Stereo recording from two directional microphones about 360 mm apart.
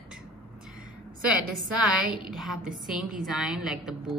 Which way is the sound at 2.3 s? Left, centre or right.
Centre.